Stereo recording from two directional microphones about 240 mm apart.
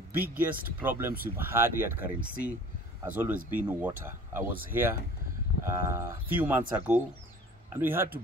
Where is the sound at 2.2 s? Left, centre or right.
Right.